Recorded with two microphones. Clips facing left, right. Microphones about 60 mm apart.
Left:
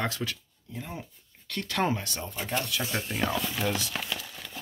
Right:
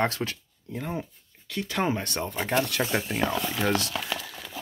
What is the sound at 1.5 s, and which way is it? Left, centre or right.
Speech, centre.